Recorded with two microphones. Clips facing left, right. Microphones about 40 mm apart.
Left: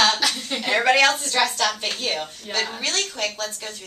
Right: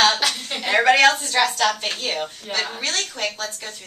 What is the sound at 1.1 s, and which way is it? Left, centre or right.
Speech, centre.